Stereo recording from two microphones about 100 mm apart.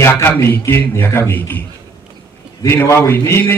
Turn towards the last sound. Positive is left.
turn(degrees=25)  # may be behind; listen again after turning